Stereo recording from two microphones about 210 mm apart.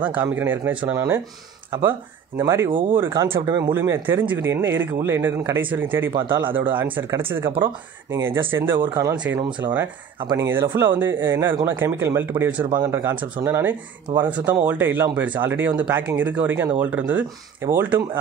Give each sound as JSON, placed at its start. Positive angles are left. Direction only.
{"t": 0.0, "sound": "speech", "side_deg": -10}
{"t": 6.1, "sound": "speech", "side_deg": -20}
{"t": 6.7, "sound": "speech", "side_deg": -10}
{"t": 7.5, "sound": "speech", "side_deg": -20}
{"t": 8.5, "sound": "speech", "side_deg": -10}
{"t": 13.1, "sound": "speech", "side_deg": -20}
{"t": 13.5, "sound": "speech", "side_deg": -10}